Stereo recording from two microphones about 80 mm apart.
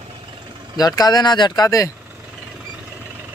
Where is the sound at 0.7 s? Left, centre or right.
Left.